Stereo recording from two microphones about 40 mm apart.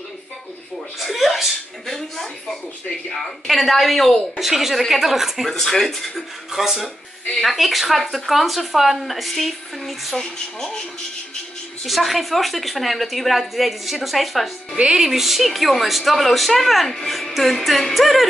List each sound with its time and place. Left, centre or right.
0.9 s a woman's voice: centre
5.6 s speech: centre
6.5 s a woman's voice: centre
10.1 s speech: centre
11.8 s a woman's voice: centre
14.8 s a woman's voice: centre